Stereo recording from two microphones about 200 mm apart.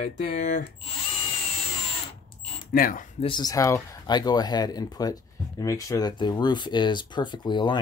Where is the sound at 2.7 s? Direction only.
45° left (ahead or behind).